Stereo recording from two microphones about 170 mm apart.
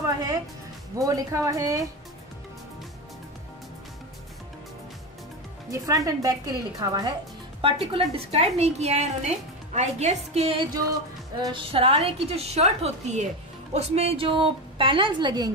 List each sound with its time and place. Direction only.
0.0 s music: 20° right (ahead or behind)
0.9 s a woman's voice: 20° right (ahead or behind)
5.7 s a woman's voice: 20° right (ahead or behind)